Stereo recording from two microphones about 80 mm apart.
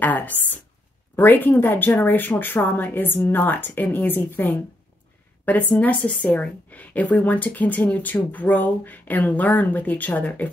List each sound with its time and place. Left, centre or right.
0.0 s a woman's voice: left